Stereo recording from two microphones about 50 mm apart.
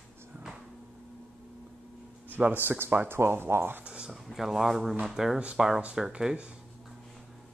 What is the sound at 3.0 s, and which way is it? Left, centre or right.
Speech, right.